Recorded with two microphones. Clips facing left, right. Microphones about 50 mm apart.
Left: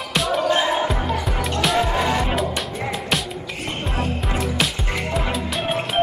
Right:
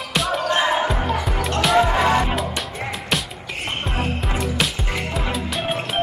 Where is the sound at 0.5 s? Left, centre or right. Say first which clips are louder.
Right 1 dB; right.